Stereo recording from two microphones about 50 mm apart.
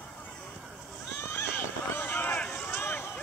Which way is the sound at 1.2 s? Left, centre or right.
Left.